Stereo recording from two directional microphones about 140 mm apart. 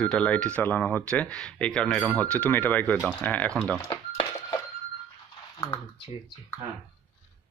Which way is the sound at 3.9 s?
35° left (ahead or behind).